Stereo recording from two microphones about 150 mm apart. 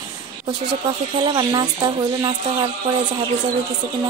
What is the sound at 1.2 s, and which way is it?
Music, 30° right (ahead or behind).